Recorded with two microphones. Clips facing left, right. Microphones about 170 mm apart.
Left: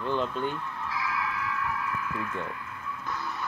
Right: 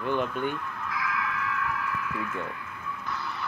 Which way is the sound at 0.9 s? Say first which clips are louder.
Right 1 dB; 30° left (ahead or behind).